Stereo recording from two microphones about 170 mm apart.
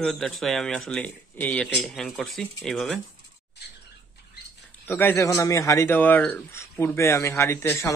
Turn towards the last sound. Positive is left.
turn(degrees=15)  # may be behind; listen again after turning